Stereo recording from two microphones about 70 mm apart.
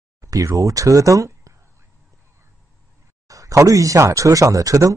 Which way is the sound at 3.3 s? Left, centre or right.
Right.